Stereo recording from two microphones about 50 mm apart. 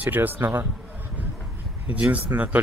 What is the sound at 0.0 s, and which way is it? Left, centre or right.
Speech, right.